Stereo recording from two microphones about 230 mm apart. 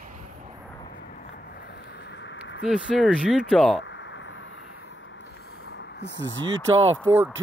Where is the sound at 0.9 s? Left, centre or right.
Left.